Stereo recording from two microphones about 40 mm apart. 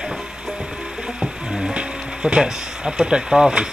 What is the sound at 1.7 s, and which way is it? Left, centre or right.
Speech, right.